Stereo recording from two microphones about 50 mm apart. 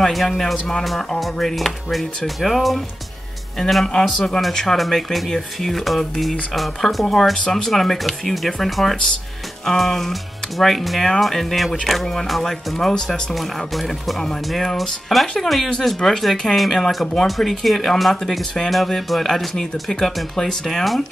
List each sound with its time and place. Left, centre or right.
0.0 s speech: centre
3.5 s speech: centre
7.3 s speech: centre
7.7 s speech: centre
13.3 s speech: centre